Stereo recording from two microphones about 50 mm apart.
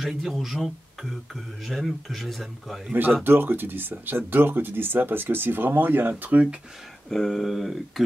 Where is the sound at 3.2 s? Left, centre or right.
Right.